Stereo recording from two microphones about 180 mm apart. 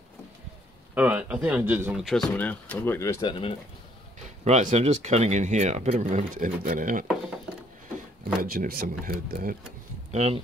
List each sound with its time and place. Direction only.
0.9 s speech: 10° right (ahead or behind); by 3.5 s 25° left (ahead or behind)
4.5 s speech: 40° right (ahead or behind)
8.4 s speech: 50° right (ahead or behind)
10.1 s speech: 35° right (ahead or behind)